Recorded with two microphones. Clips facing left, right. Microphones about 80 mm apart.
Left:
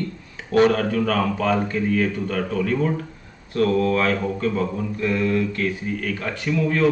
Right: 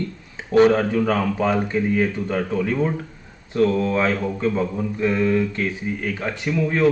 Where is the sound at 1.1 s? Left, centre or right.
Centre.